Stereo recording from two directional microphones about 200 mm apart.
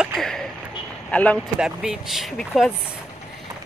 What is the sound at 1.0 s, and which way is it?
Speech, 5° left (ahead or behind).